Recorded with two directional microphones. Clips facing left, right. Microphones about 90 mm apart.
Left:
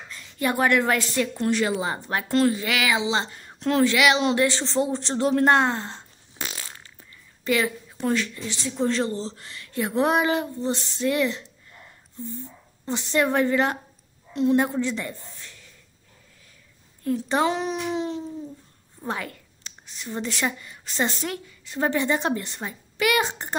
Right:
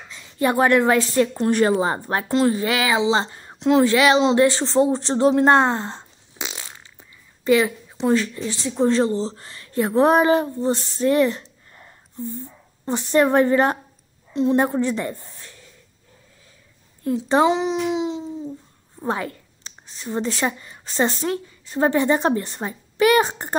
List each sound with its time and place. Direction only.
0.1 s a woman's voice: 25° right (ahead or behind)
1.5 s a woman's voice: 45° right (ahead or behind); by 3.8 s 20° right (ahead or behind)
3.8 s a woman's voice: 35° right (ahead or behind)
6.3 s fart: 20° right (ahead or behind)
8.1 s a woman's voice: 35° right (ahead or behind)
17.0 s a child's voice: 25° right (ahead or behind)
18.9 s a woman's voice: 30° right (ahead or behind)